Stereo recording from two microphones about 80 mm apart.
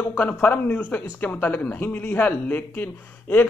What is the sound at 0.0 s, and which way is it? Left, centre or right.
Speech, centre.